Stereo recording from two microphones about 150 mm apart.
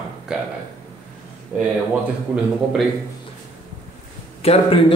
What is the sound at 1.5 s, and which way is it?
Speech, 5° right (ahead or behind).